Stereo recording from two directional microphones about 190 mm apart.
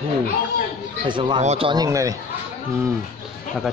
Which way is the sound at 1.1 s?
25° right (ahead or behind).